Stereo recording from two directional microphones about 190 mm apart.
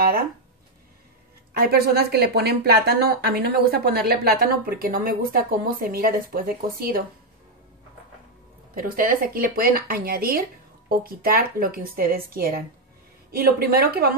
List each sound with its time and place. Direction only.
1.6 s speech: 55° right (ahead or behind)
8.7 s speech: 50° right (ahead or behind)